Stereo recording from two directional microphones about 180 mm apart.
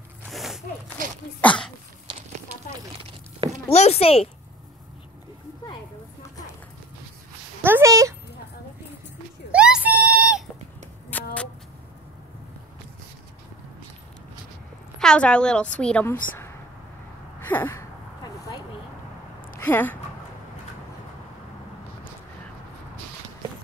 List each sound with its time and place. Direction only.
0.3 s a sound: centre (ahead or behind)
1.4 s throat clearing: 5° left (ahead or behind)
3.7 s a child's voice: 35° left (ahead or behind)
7.6 s speech: 15° right (ahead or behind)
9.5 s a sound: 5° right (ahead or behind)
11.1 s vehicle: 10° left (ahead or behind)
15.0 s a woman's voice: 5° left (ahead or behind)
17.4 s a sound: 10° left (ahead or behind)
19.6 s speech: 10° left (ahead or behind)